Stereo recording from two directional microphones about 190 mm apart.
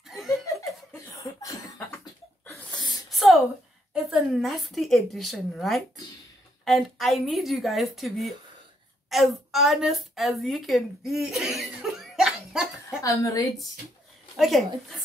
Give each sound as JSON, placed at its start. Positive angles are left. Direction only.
{"t": 0.0, "sound": "laughter", "side_deg": 0}
{"t": 0.9, "sound": "cough", "side_deg": 15}
{"t": 3.1, "sound": "a sound", "side_deg": 0}
{"t": 3.9, "sound": "a woman's voice", "side_deg": 0}
{"t": 13.0, "sound": "a woman's voice", "side_deg": 15}
{"t": 14.3, "sound": "a woman's voice", "side_deg": 0}